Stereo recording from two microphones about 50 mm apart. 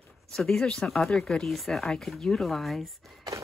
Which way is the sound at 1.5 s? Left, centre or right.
Centre.